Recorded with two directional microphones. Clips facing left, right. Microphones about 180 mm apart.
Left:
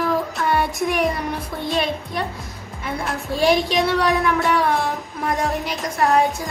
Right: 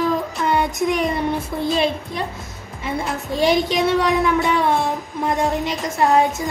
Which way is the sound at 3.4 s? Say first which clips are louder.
Even; 20° right (ahead or behind).